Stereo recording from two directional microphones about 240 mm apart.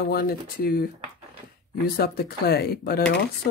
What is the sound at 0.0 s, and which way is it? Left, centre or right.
Speech, left.